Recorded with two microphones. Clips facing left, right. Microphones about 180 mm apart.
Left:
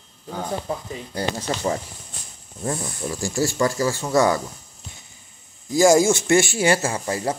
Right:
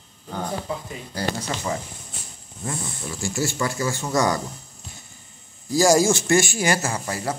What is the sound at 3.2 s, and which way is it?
Speech, 35° left (ahead or behind).